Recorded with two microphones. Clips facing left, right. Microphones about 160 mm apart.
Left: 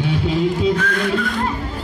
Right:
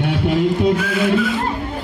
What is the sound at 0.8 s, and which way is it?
Music, 5° right (ahead or behind).